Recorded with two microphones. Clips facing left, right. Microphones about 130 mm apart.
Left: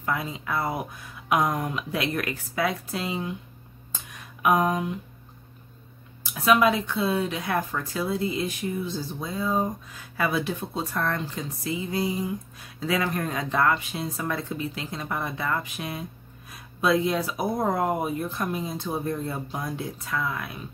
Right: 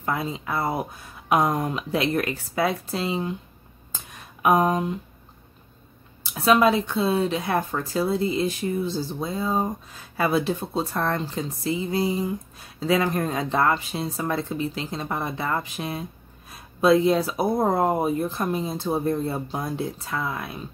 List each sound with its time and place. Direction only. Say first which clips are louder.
0.0 s speech: right 2 dB; 30° right (ahead or behind)
4.4 s speech: right 2 dB; 30° right (ahead or behind)
6.4 s speech: right 2 dB; 30° right (ahead or behind)